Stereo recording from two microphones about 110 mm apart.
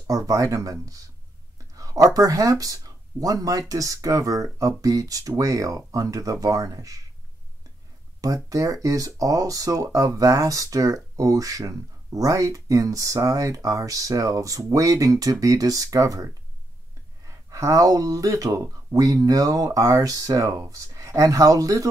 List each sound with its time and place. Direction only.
0.0 s speech: 30° right (ahead or behind)
8.2 s speech: 30° right (ahead or behind)
17.3 s speech: 30° right (ahead or behind)